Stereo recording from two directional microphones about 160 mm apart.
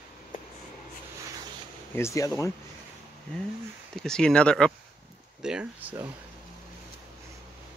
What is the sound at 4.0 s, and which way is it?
Speech, 5° left (ahead or behind).